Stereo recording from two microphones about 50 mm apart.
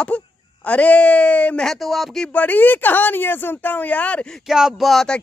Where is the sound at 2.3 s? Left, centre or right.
Left.